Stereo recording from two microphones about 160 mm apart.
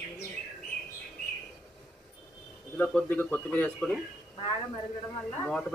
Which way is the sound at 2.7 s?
10° left (ahead or behind).